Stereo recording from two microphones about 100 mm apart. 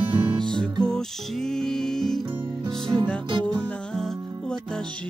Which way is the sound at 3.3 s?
50° right (ahead or behind).